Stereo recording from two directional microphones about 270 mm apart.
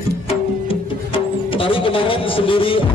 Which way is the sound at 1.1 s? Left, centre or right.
Centre.